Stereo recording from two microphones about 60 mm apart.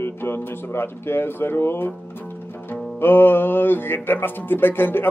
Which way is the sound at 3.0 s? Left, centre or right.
Left.